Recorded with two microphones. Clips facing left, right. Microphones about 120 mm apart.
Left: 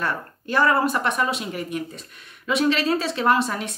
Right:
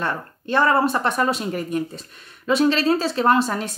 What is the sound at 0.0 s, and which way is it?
Speech, 25° right (ahead or behind).